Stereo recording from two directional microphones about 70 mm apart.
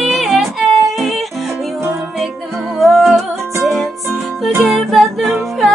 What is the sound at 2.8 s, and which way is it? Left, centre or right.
Music, centre.